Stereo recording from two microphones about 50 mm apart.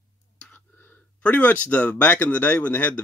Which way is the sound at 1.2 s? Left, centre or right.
Left.